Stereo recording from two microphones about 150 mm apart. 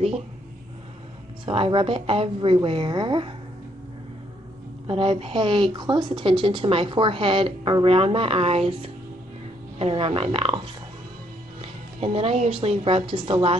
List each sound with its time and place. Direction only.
1.4 s speech: 35° right (ahead or behind)
4.8 s speech: 35° right (ahead or behind)
11.6 s music: 40° right (ahead or behind)
12.5 s speech: 40° right (ahead or behind)